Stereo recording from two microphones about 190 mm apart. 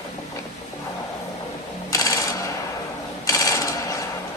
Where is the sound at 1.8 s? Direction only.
20° left (ahead or behind).